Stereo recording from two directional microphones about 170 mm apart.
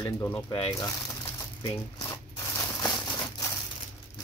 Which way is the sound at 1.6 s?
25° left (ahead or behind).